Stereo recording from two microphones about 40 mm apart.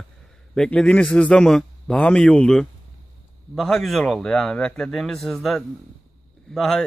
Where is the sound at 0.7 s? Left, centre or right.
Left.